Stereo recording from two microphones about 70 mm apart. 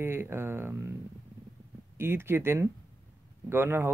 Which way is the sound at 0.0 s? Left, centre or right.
Right.